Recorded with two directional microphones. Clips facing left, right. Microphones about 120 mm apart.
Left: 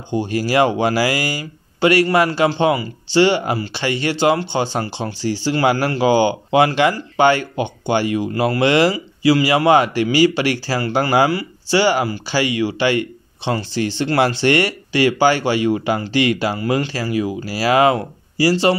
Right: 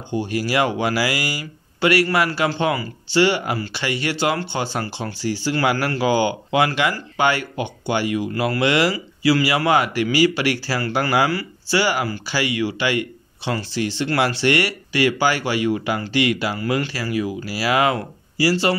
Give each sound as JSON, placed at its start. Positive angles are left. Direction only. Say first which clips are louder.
{"t": 0.1, "sound": "speech", "louder": "left 4 dB", "side_deg": 25}